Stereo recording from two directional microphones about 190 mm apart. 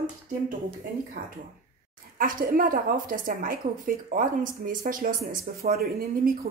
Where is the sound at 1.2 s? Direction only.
50° right (ahead or behind).